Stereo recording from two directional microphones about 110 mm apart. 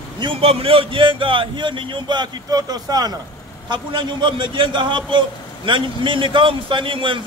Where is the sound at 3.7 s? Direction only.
45° right (ahead or behind).